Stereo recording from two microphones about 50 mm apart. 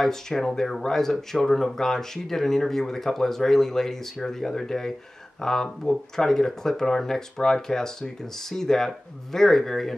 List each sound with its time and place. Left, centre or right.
0.0 s speech: centre